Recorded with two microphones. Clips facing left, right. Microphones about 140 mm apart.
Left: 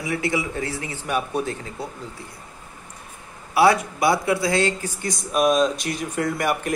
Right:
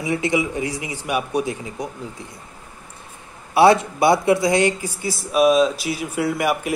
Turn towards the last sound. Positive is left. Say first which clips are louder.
# right 2 dB
turn(degrees=-5)  # may be behind; listen again after turning